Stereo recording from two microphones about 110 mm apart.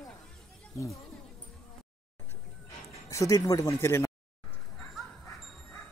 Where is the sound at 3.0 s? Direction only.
30° left (ahead or behind).